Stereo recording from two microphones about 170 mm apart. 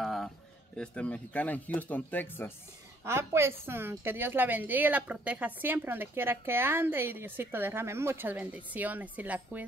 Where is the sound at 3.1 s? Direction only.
15° right (ahead or behind).